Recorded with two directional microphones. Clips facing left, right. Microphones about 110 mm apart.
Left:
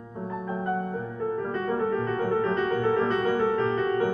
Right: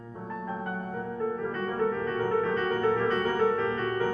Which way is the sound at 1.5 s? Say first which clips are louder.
Left 2 dB; 15° left (ahead or behind).